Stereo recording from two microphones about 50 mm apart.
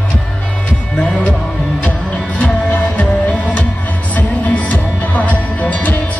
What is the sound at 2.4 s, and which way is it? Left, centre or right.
Music, left.